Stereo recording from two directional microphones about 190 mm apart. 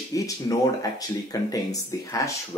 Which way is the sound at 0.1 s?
20° left (ahead or behind).